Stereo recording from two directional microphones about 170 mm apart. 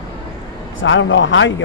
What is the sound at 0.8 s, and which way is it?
Speech, 90° left.